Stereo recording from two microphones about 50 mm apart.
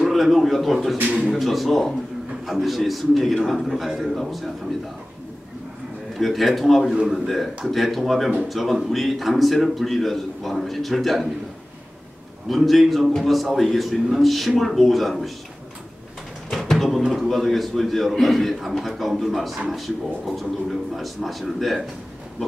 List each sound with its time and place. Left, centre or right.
0.0 s a man's voice: centre
0.9 s a man's voice: right
1.3 s a man's voice: centre
6.1 s a man's voice: centre
12.4 s a man's voice: centre
16.5 s a man's voice: centre